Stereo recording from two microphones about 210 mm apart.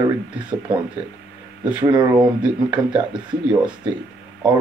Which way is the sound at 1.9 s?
20° right (ahead or behind).